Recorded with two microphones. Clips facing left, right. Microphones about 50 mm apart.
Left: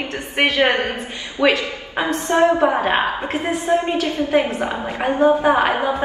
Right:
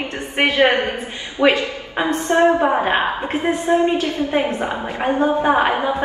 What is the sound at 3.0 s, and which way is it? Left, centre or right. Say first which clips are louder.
Speech: right 1 dB; centre.